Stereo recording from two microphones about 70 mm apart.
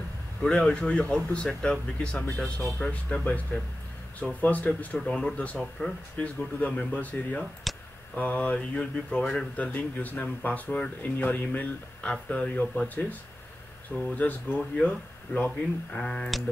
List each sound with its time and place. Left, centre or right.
0.4 s speech: centre
4.9 s speech: centre
5.6 s speech: centre
6.1 s speech: centre
7.7 s a sound: centre
8.2 s speech: left
14.1 s speech: left